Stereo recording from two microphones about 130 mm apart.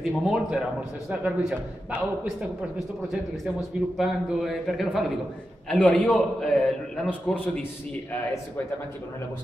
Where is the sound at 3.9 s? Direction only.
Centre (ahead or behind).